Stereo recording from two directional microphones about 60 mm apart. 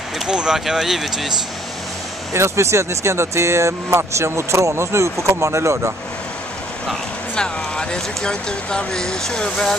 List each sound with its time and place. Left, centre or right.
0.3 s speech: centre
2.3 s speech: right
7.3 s speech: centre